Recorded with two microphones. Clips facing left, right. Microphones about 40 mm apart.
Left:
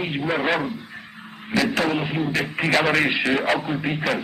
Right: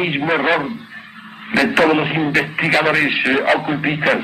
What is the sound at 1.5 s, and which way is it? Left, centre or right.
A man's voice, right.